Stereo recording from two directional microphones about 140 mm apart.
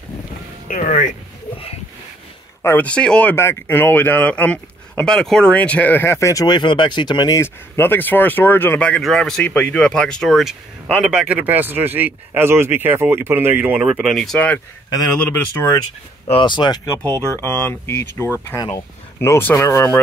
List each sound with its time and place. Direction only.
0.7 s speech: 70° left (ahead or behind)
2.6 s speech: 15° left (ahead or behind)
16.3 s speech: 35° left (ahead or behind)
17.0 s speech: 20° right (ahead or behind)
17.4 s speech: 15° left (ahead or behind)